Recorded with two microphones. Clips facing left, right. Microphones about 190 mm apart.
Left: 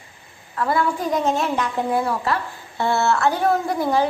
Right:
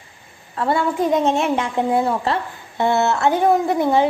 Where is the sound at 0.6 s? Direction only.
25° right (ahead or behind).